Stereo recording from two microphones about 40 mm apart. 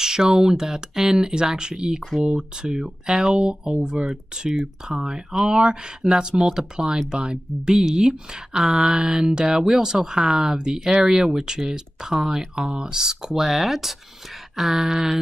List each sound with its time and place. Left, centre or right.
0.0 s speech: centre